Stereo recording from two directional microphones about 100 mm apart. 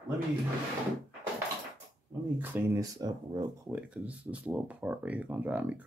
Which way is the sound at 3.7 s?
15° right (ahead or behind).